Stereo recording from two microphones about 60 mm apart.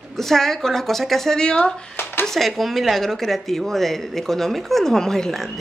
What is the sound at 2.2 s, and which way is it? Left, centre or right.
Speech, centre.